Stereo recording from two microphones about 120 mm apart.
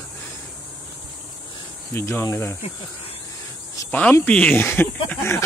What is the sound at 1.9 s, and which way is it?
Speech, 20° left (ahead or behind).